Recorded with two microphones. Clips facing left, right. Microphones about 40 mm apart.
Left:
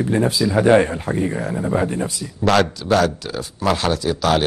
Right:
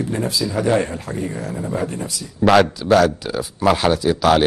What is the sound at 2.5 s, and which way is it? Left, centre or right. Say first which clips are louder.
Speech: right 3 dB; centre.